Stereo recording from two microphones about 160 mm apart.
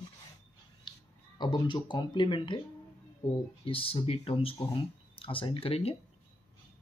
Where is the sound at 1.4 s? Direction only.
30° left (ahead or behind).